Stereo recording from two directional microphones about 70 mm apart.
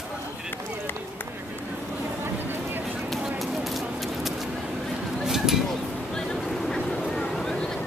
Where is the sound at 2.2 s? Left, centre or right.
Right.